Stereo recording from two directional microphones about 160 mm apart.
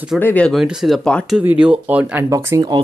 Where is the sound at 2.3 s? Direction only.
20° right (ahead or behind).